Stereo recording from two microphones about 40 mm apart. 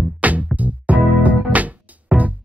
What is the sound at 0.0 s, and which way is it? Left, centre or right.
Music, right.